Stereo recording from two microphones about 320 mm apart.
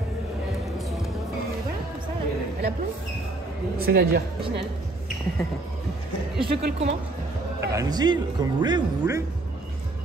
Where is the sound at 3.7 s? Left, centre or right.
Right.